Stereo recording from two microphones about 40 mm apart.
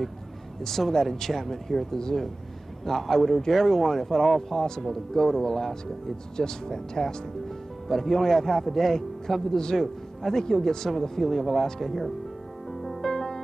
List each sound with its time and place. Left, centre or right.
0.7 s speech: centre
12.8 s music: centre